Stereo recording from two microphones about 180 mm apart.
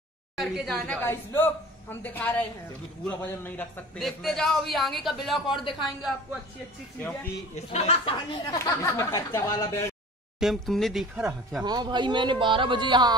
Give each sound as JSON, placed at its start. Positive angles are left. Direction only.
{"t": 0.4, "sound": "a woman's voice", "side_deg": 0}
{"t": 5.5, "sound": "speech", "side_deg": 25}
{"t": 7.5, "sound": "speech", "side_deg": 35}
{"t": 10.4, "sound": "a man's voice", "side_deg": 0}
{"t": 11.6, "sound": "speech", "side_deg": -25}